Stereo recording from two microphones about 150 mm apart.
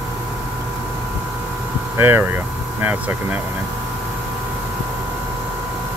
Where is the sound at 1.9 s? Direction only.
15° right (ahead or behind).